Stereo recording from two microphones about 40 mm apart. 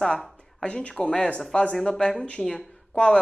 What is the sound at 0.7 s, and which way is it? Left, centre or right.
Speech, left.